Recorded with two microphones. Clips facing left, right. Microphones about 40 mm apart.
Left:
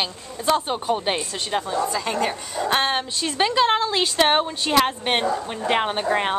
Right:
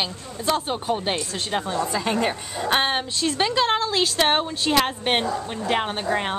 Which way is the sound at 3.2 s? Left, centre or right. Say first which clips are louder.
Left 2 dB; centre.